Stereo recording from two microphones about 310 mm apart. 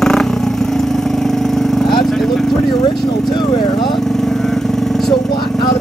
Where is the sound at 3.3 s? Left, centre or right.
Centre.